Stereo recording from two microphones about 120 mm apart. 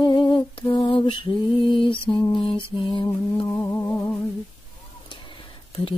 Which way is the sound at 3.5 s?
15° left (ahead or behind).